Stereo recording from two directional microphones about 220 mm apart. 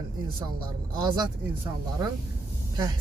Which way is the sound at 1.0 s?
20° right (ahead or behind).